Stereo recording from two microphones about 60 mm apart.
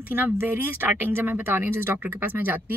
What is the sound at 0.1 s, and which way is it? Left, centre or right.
A woman's voice, right.